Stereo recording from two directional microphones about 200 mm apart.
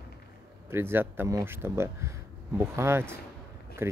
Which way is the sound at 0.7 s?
10° right (ahead or behind).